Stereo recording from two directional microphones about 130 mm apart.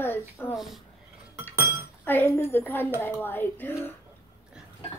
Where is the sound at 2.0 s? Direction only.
15° left (ahead or behind).